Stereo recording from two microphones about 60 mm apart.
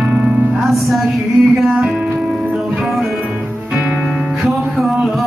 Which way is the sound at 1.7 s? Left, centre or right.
Centre.